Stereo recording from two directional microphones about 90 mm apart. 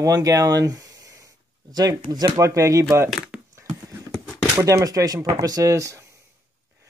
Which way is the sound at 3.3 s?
15° right (ahead or behind).